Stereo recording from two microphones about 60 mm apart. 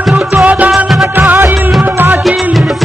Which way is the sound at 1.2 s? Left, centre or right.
Right.